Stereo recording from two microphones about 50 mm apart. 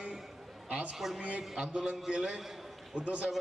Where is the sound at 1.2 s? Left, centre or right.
Right.